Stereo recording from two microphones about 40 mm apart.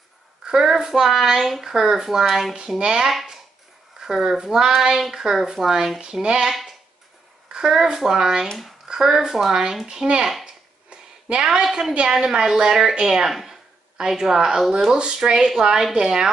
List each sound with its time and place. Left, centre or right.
0.5 s speech: centre
2.2 s speech: centre
2.8 s a child's voice: right
3.1 s speech: centre
6.2 s a child's voice: right
7.5 s a child's voice: centre
10.4 s a sound: right
11.4 s speech: centre